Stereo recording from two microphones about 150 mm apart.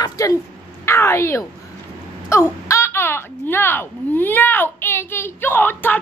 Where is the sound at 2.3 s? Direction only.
20° left (ahead or behind).